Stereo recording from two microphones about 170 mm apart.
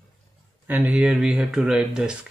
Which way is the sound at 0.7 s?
10° right (ahead or behind).